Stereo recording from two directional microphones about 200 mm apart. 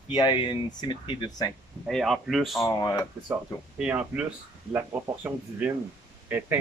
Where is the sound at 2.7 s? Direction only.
20° left (ahead or behind).